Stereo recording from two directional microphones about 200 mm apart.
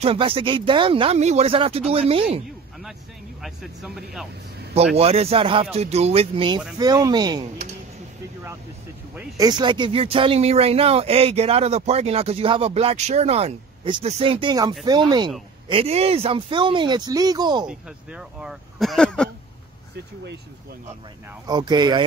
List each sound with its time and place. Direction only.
0.0 s speech: 25° right (ahead or behind)
3.4 s speech: centre (ahead or behind)
4.9 s speech: 30° right (ahead or behind)
9.4 s speech: 20° right (ahead or behind)
17.6 s speech: 5° right (ahead or behind)
21.5 s speech: 20° right (ahead or behind)